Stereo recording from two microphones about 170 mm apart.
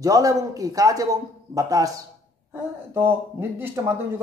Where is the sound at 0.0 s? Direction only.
20° right (ahead or behind).